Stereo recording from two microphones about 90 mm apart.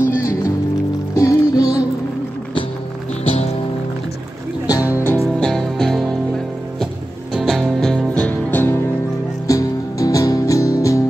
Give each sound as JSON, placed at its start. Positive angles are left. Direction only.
{"t": 0.0, "sound": "music", "side_deg": 30}
{"t": 4.6, "sound": "music", "side_deg": 40}
{"t": 5.4, "sound": "music", "side_deg": 5}
{"t": 7.9, "sound": "music", "side_deg": 10}
{"t": 9.5, "sound": "music", "side_deg": 40}